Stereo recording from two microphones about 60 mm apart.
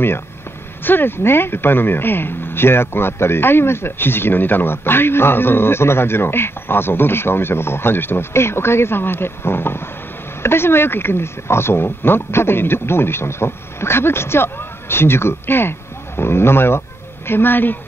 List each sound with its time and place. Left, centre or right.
0.8 s speech: left